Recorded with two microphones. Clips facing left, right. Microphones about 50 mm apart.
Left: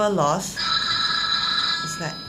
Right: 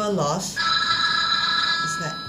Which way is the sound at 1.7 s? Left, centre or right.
Right.